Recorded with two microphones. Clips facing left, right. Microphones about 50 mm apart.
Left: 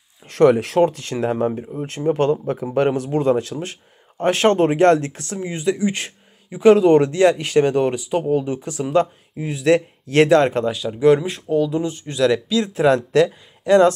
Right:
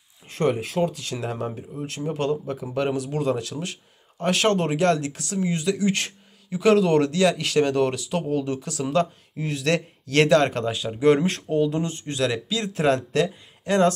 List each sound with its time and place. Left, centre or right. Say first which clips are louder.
0.3 s speech: left 9 dB; left
0.8 s speech: left 7 dB; left
10.9 s speech: left 4 dB; centre
11.7 s speech: left 4 dB; right
12.3 s speech: left 8 dB; right
12.6 s speech: left 4 dB; left